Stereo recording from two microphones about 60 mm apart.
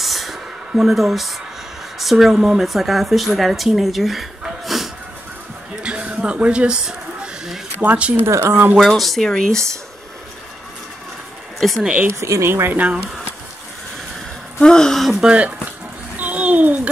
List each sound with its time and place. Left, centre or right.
0.0 s a sound: centre
2.0 s a woman's voice: centre
5.8 s a sound: centre
7.8 s speech: right
8.7 s a woman's voice: centre
11.6 s speech: centre
12.1 s speech: right
12.7 s speech: right
14.6 s speech: centre
15.1 s speech: centre
16.2 s a sound: right